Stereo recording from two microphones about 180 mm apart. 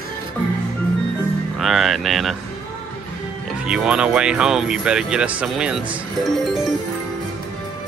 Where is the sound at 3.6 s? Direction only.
5° right (ahead or behind).